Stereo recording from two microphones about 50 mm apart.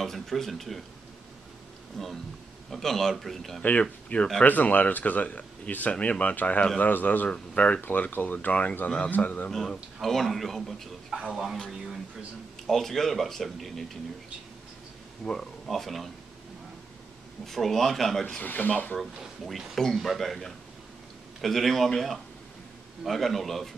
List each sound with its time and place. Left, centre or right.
0.0 s speech: centre
2.0 s speech: centre
4.1 s speech: left
7.2 s speech: left
7.8 s speech: left
8.8 s speech: centre
9.1 s speech: left
9.5 s speech: centre
12.6 s speech: centre
15.2 s speech: centre
17.5 s speech: centre
18.4 s speech: left
18.9 s speech: centre